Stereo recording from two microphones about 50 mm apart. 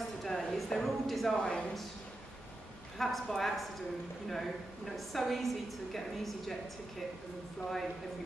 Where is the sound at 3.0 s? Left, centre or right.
Centre.